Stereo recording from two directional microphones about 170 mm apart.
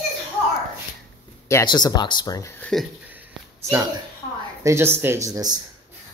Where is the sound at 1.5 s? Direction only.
20° left (ahead or behind).